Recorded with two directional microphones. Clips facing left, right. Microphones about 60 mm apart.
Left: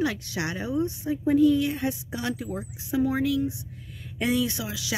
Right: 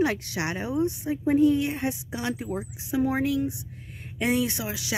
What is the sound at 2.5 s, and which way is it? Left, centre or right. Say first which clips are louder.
Speech: right 2 dB; centre.